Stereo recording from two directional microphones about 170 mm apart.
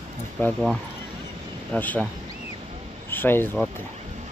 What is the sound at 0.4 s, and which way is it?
Speech, 10° left (ahead or behind).